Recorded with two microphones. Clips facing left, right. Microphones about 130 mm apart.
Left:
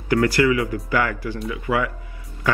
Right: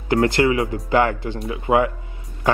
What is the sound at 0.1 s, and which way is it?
A man's voice, 25° right (ahead or behind).